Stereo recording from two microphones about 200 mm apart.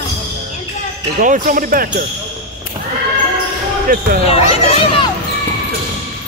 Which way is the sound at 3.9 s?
45° right (ahead or behind).